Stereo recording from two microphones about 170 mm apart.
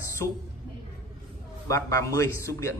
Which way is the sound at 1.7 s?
20° left (ahead or behind).